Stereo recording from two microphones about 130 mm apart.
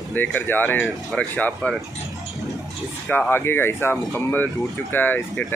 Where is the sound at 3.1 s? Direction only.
15° left (ahead or behind).